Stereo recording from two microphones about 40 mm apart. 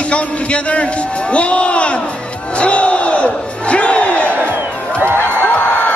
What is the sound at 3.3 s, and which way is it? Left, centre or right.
Crowd, left.